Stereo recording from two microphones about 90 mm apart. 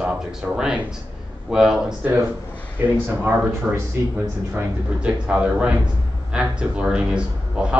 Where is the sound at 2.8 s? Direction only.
20° right (ahead or behind).